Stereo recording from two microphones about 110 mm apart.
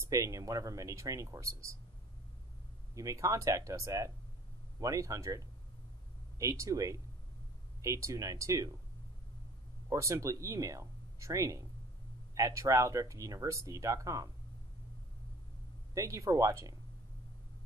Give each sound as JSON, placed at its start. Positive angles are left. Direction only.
{"t": 0.0, "sound": "speech", "side_deg": -30}
{"t": 2.9, "sound": "speech", "side_deg": -30}
{"t": 9.8, "sound": "speech", "side_deg": -30}
{"t": 15.9, "sound": "speech", "side_deg": -30}